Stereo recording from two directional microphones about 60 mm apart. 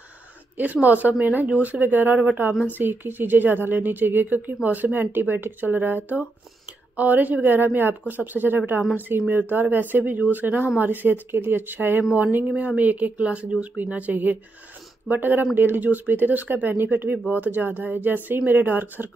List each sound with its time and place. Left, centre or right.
0.6 s speech: right